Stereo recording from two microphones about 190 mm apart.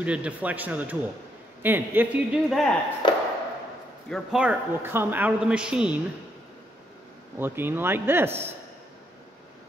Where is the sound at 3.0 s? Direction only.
25° left (ahead or behind).